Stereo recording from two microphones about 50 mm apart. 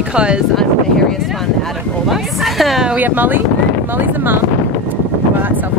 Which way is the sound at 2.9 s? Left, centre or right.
Right.